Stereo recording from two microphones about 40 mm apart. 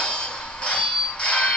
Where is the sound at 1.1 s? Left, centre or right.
Left.